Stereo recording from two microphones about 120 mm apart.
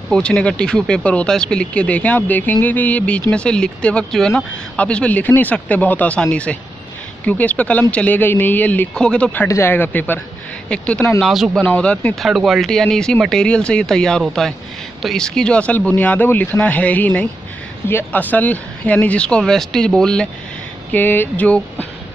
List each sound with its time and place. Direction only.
0.1 s speech: 5° left (ahead or behind)
11.1 s speech: centre (ahead or behind)
11.6 s speech: 10° left (ahead or behind)
12.3 s speech: centre (ahead or behind)
20.9 s speech: 15° left (ahead or behind)